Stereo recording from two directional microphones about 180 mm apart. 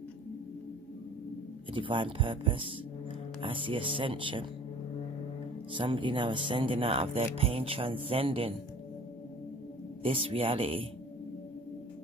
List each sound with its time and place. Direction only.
1.7 s speech: 30° right (ahead or behind)
5.8 s speech: 30° right (ahead or behind)
10.0 s speech: 30° right (ahead or behind)